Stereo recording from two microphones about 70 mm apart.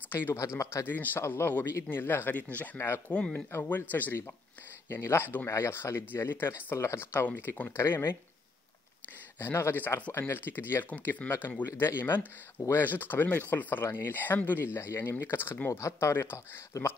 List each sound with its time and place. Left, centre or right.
0.1 s speech: left
0.4 s speech: left
0.8 s speech: left
3.1 s speech: centre
3.5 s speech: left
4.8 s speech: left
7.2 s speech: left
7.7 s speech: left
9.4 s speech: left
16.7 s speech: left